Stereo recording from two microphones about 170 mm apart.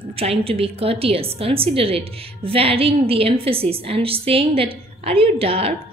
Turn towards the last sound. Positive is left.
turn(degrees=-35)  # may be behind; listen again after turning